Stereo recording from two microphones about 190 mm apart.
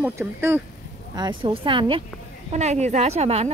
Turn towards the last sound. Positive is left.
turn(degrees=-35)  # may be behind; listen again after turning